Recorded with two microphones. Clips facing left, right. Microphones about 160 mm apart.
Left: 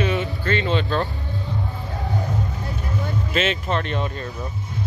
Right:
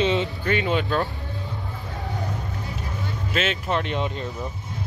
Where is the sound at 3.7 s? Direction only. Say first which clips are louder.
Even; 15° right (ahead or behind).